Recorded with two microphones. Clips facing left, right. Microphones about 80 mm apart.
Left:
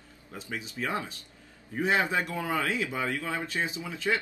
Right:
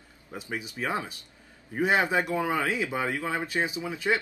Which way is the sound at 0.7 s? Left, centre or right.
Right.